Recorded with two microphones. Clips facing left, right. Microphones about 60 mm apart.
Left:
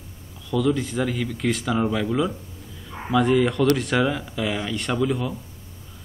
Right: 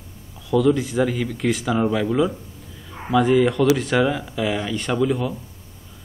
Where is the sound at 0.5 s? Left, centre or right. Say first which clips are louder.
Right 4 dB; centre.